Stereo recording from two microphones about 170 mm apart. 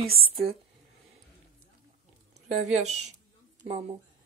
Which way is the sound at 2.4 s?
40° right (ahead or behind).